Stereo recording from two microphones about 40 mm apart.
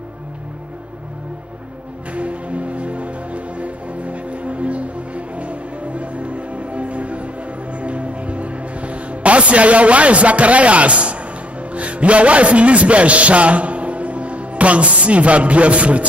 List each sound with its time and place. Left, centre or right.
2.1 s music: right
11.7 s a man's voice: right